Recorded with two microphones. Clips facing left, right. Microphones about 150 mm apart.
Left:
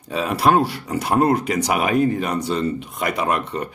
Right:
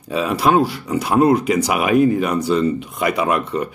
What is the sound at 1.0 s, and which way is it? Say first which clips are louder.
Speech: right 3 dB; 45° left (ahead or behind).